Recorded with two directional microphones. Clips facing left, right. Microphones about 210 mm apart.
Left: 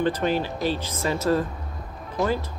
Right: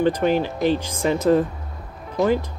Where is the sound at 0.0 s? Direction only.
15° right (ahead or behind).